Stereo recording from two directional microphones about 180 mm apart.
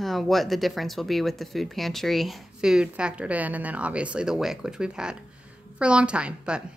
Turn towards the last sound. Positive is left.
turn(degrees=-5)  # may be behind; listen again after turning